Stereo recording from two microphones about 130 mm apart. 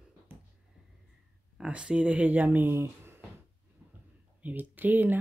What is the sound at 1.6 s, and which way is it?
Speech, 10° right (ahead or behind).